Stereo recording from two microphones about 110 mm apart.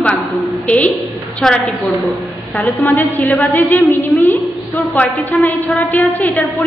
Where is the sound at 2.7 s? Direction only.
20° left (ahead or behind).